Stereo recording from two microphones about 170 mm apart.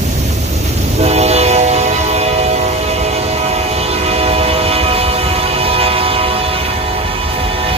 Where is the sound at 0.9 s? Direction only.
40° right (ahead or behind).